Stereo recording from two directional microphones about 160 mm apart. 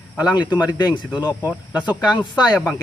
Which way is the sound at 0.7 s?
30° left (ahead or behind).